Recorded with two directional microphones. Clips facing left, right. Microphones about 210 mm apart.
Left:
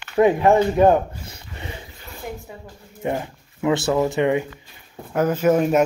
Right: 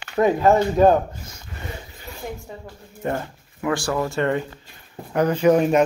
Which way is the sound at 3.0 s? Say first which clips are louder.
Left 1 dB; 15° left (ahead or behind).